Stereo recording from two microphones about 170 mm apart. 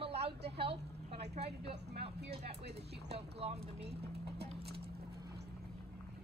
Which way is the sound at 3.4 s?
35° right (ahead or behind).